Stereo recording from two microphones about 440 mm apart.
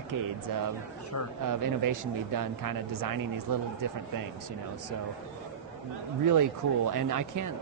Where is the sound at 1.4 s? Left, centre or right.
Right.